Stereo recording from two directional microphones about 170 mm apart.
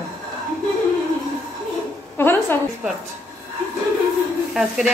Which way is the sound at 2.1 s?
10° left (ahead or behind).